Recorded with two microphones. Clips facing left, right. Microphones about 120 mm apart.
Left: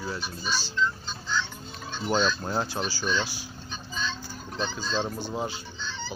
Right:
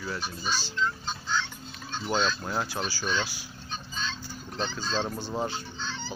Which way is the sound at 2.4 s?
25° left (ahead or behind).